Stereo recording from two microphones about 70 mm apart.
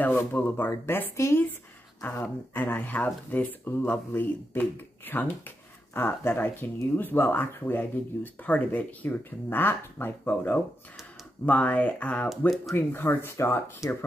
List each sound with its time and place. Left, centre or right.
0.4 s speech: left
2.5 s speech: left
12.3 s speech: centre
12.7 s speech: left